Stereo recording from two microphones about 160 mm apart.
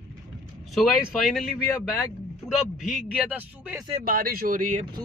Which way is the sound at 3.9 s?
60° right (ahead or behind).